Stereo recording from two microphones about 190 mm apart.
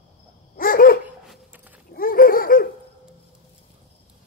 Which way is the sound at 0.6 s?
50° left (ahead or behind).